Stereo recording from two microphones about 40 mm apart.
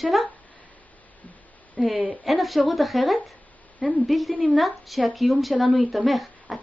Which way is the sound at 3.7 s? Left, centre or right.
Right.